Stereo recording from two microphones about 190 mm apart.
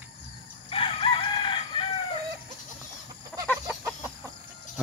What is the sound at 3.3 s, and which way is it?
Chicken, 5° left (ahead or behind).